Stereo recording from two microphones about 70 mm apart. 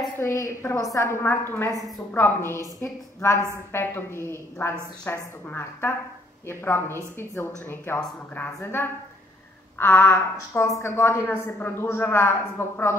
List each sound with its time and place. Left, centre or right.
0.2 s a woman's voice: left
2.6 s a woman's voice: left
3.7 s a woman's voice: left
9.8 s a woman's voice: left